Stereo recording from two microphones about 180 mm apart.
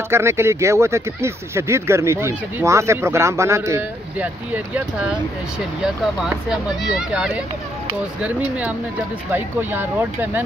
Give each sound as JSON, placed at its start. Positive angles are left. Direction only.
{"t": 0.1, "sound": "speech", "side_deg": -15}
{"t": 6.2, "sound": "speech", "side_deg": -5}